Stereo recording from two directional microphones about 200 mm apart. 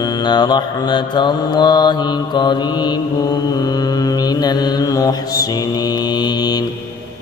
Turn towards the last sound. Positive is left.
turn(degrees=20)  # may be behind; listen again after turning